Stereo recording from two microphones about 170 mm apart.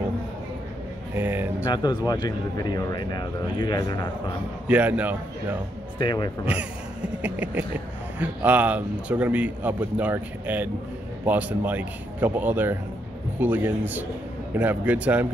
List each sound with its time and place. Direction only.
1.1 s a man's voice: 10° right (ahead or behind)
1.7 s speech: 25° left (ahead or behind)
4.6 s a man's voice: 10° right (ahead or behind)
5.9 s speech: 25° left (ahead or behind)
7.2 s a man's voice: 10° right (ahead or behind)